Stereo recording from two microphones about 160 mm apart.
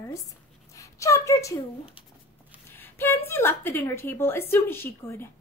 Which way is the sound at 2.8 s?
15° left (ahead or behind).